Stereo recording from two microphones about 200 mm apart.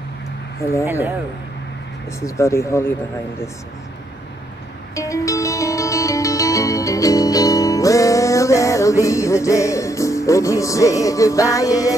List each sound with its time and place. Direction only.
0.8 s speech: 10° right (ahead or behind)
2.0 s speech: 15° left (ahead or behind)
4.9 s music: 15° left (ahead or behind)